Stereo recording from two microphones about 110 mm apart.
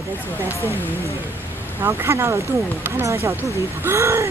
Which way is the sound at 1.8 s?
25° right (ahead or behind).